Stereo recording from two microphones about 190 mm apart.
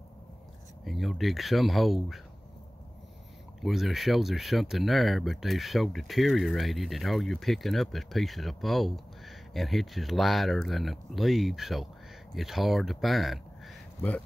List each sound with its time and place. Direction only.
0.8 s speech: centre (ahead or behind)
3.6 s speech: centre (ahead or behind)